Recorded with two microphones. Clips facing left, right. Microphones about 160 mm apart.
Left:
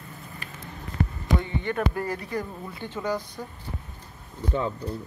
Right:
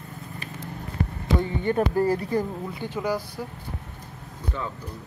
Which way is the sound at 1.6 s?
35° right (ahead or behind).